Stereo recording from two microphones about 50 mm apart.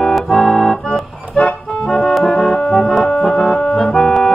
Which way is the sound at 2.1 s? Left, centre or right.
Centre.